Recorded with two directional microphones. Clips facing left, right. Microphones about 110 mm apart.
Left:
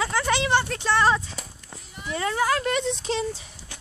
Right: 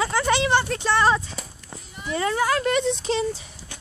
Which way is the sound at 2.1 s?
Centre (ahead or behind).